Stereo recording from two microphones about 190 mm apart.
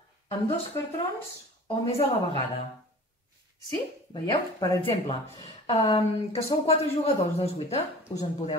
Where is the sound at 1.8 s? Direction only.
30° left (ahead or behind).